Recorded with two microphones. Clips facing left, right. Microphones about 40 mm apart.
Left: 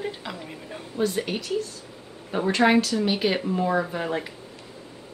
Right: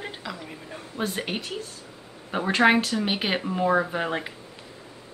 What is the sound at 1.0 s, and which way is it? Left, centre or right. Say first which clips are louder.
A woman's voice: left 3 dB; right.